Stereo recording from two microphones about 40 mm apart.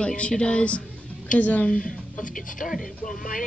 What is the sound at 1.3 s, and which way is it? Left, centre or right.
Speech, left.